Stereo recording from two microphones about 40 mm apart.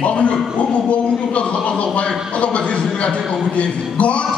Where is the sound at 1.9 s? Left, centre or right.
Left.